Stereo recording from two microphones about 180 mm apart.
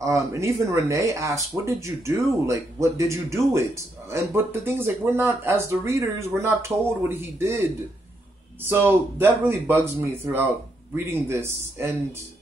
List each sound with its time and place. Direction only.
0.0 s speech: 15° right (ahead or behind)
8.6 s speech: 10° right (ahead or behind)